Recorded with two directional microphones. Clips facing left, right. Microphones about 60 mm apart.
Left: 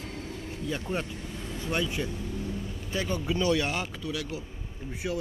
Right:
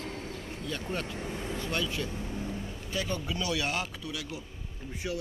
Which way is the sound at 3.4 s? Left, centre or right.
Left.